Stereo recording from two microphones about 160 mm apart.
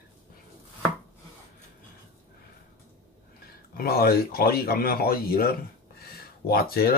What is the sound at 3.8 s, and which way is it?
Speech, 70° left (ahead or behind).